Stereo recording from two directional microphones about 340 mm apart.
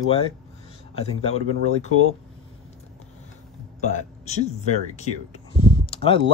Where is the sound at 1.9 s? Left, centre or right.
Left.